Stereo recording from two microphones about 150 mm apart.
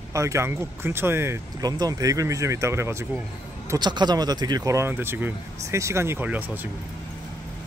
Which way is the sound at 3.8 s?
30° right (ahead or behind).